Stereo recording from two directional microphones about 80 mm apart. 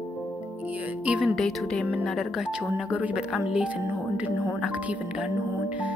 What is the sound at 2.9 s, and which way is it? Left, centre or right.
Speech, centre.